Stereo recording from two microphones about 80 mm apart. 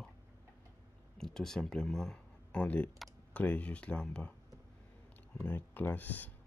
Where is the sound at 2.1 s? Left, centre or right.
Centre.